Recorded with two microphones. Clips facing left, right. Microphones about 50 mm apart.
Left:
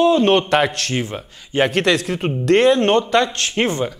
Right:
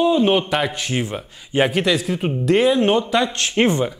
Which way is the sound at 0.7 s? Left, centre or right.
Centre.